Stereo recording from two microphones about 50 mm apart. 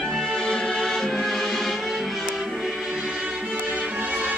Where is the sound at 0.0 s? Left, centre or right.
Centre.